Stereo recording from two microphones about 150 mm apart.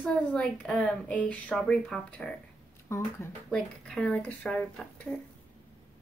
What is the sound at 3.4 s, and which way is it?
Speech, 5° left (ahead or behind).